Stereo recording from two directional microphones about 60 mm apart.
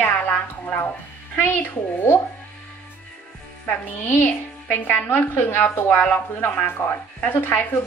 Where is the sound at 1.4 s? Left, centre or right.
Left.